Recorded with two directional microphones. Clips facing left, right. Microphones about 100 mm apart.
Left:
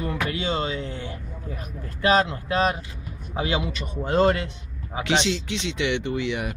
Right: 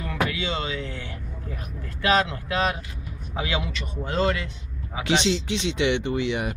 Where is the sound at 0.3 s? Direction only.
40° left (ahead or behind).